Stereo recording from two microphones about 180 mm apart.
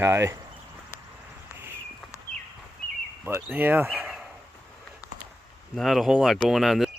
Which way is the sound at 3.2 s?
15° right (ahead or behind).